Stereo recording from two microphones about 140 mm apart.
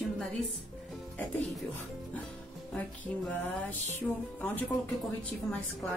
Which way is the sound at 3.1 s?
10° left (ahead or behind).